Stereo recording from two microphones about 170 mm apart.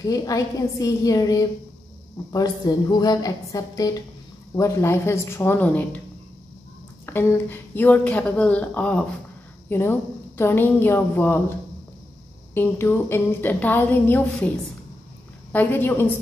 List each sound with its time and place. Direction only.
0.0 s a woman's voice: 20° left (ahead or behind)
7.1 s a woman's voice: 15° left (ahead or behind)
12.5 s a woman's voice: 15° left (ahead or behind)
15.5 s a woman's voice: 10° left (ahead or behind)